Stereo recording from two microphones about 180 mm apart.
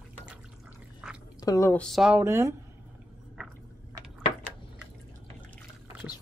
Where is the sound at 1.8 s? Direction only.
Centre (ahead or behind).